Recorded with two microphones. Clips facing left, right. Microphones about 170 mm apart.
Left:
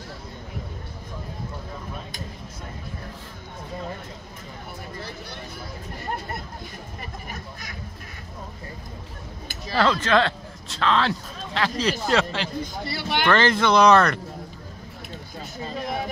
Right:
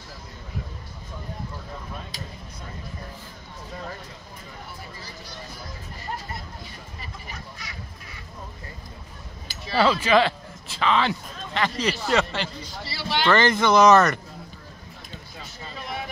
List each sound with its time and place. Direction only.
4.9 s speech: 60° left (ahead or behind)
7.0 s speech: 50° left (ahead or behind)
9.8 s speech: 10° right (ahead or behind)
12.5 s speech: 50° left (ahead or behind)
13.3 s speech: 5° right (ahead or behind)